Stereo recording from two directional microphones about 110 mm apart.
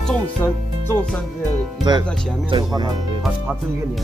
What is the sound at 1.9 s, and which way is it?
Speech, 40° right (ahead or behind).